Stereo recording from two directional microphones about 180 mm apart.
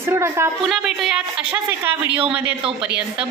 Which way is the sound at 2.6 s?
30° right (ahead or behind).